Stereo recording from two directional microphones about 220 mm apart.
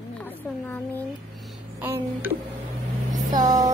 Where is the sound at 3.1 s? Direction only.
35° right (ahead or behind).